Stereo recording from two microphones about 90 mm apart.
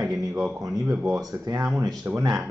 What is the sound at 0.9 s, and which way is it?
Speech, 5° right (ahead or behind).